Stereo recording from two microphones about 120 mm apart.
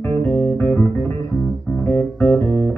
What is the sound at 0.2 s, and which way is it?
Music, 15° left (ahead or behind).